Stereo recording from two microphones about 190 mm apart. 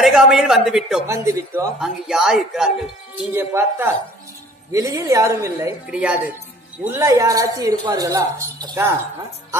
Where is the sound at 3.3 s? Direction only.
15° right (ahead or behind).